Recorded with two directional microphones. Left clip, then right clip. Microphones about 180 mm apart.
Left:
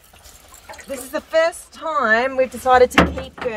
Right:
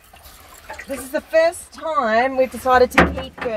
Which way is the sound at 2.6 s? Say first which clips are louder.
Left 2 dB; 40° left (ahead or behind).